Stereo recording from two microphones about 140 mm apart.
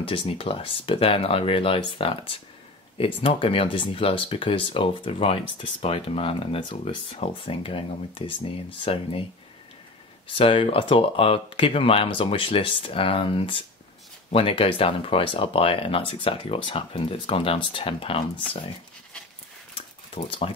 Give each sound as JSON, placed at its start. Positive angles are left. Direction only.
{"t": 0.0, "sound": "speech", "side_deg": 40}
{"t": 10.2, "sound": "speech", "side_deg": 40}
{"t": 20.2, "sound": "speech", "side_deg": 40}